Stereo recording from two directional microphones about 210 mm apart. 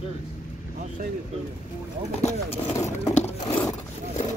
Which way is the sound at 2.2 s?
30° left (ahead or behind).